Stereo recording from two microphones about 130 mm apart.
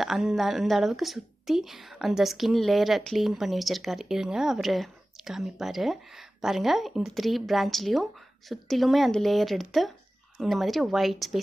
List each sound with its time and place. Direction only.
0.0 s a woman's voice: centre (ahead or behind)